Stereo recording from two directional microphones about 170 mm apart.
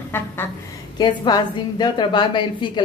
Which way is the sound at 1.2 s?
25° left (ahead or behind).